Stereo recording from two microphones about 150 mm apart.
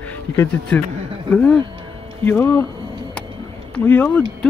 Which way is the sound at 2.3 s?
15° left (ahead or behind).